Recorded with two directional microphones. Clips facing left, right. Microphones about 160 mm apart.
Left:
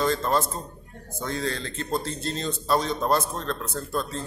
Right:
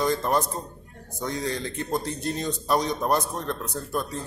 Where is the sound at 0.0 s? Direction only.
15° right (ahead or behind).